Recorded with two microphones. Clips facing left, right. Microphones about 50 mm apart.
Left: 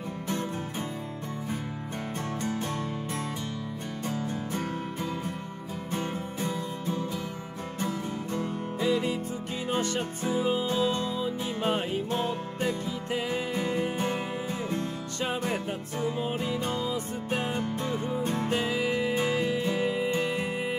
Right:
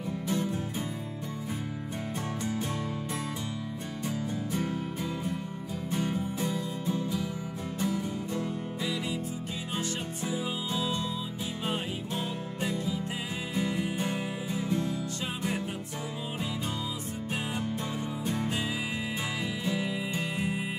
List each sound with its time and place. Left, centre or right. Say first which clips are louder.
4.5 s music: even; left